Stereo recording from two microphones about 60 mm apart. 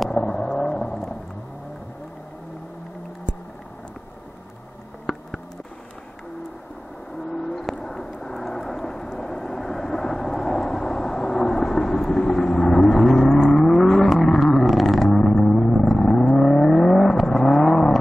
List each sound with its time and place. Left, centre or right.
0.2 s vehicle: left
0.7 s vehicle: centre
5.1 s a sound: centre
7.2 s vehicle: centre